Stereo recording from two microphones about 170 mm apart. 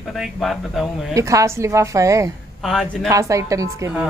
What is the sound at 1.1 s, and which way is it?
A woman's voice, 20° right (ahead or behind).